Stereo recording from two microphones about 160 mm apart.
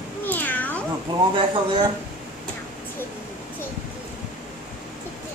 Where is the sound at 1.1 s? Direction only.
25° right (ahead or behind).